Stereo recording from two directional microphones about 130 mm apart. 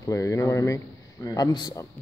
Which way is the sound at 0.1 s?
25° left (ahead or behind).